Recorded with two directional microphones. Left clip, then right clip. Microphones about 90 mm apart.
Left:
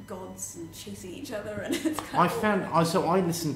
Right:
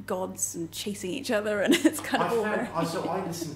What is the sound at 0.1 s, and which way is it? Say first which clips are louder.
A woman's voice: right 7 dB; 40° right (ahead or behind).